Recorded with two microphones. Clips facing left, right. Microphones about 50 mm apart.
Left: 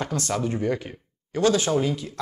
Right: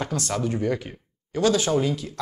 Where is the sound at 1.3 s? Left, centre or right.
Left.